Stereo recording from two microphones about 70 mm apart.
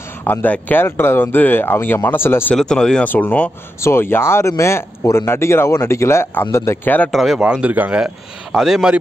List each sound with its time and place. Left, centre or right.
0.2 s speech: left
2.5 s speech: centre
3.1 s speech: left
3.8 s a man's voice: left
6.8 s speech: left
7.1 s a man's voice: centre
7.3 s speech: centre
8.0 s a man's voice: centre